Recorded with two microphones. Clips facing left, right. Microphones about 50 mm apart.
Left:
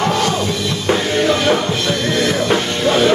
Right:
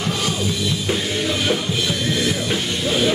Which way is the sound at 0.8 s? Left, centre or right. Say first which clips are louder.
Left 10 dB; left.